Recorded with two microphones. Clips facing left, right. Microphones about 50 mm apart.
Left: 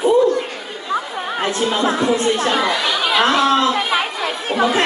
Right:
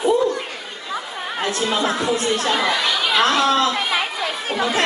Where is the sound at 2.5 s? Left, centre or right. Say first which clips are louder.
Left 2 dB; centre.